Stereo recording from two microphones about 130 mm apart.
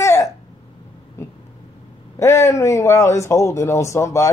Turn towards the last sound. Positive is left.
turn(degrees=25)  # may be behind; listen again after turning